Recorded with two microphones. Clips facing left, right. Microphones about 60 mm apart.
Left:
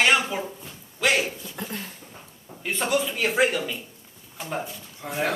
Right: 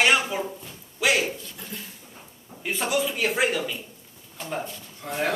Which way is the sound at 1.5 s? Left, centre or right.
Left.